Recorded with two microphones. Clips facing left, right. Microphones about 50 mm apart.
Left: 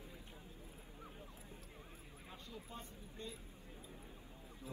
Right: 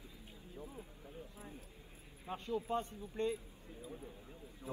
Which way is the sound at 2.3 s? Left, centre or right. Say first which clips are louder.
Right 15 dB; right.